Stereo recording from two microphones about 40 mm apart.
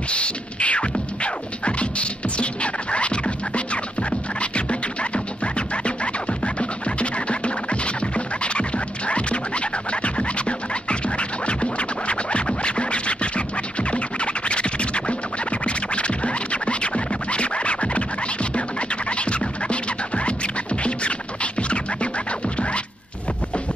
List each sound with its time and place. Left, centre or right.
0.1 s music: left